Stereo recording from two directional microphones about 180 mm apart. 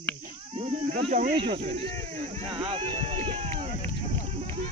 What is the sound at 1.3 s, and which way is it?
Speech, 30° right (ahead or behind).